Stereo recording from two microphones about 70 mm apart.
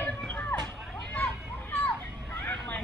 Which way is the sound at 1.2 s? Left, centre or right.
Left.